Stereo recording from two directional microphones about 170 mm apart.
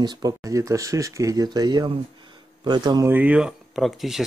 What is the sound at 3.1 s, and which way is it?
Speech, 10° right (ahead or behind).